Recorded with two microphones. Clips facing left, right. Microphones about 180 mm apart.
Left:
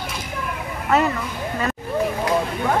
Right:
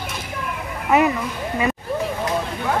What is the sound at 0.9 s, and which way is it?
Speech, 10° right (ahead or behind).